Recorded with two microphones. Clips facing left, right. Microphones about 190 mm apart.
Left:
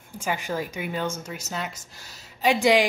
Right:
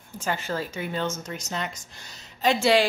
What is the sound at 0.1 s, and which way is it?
A woman's voice, 10° left (ahead or behind).